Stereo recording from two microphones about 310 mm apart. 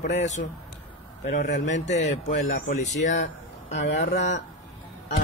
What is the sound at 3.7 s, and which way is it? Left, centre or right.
Speech, left.